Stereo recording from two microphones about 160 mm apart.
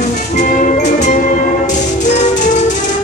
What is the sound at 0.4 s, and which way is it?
Music, 55° left (ahead or behind).